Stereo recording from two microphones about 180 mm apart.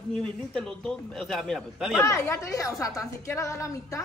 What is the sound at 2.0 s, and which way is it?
A woman's voice, 15° left (ahead or behind).